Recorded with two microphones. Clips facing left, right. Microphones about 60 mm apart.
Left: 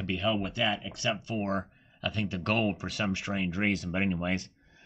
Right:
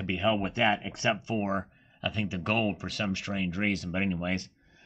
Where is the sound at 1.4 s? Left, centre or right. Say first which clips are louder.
Right 1 dB; centre.